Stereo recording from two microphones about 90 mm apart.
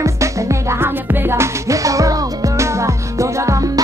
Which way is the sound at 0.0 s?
35° right (ahead or behind).